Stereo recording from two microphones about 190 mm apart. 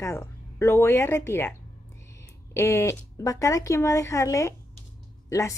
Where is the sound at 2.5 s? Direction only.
15° left (ahead or behind).